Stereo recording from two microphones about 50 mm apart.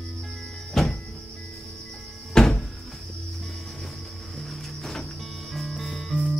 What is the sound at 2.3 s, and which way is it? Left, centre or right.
Cupboard open or close, centre.